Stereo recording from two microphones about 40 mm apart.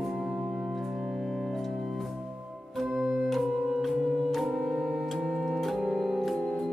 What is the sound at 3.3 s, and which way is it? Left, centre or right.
Music, centre.